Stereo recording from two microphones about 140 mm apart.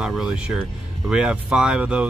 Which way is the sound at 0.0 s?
5° right (ahead or behind).